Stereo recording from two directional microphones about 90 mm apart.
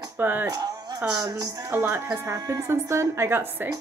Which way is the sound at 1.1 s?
45° right (ahead or behind).